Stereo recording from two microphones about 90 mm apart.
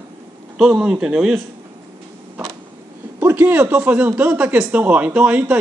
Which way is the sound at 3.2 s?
20° right (ahead or behind).